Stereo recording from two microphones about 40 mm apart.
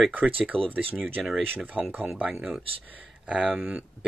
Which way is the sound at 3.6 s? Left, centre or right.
Right.